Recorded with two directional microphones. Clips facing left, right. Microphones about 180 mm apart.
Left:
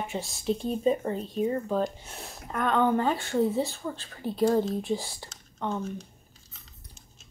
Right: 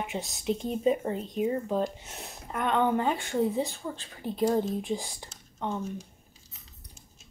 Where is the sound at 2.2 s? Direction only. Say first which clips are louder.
Left 2 dB; 20° right (ahead or behind).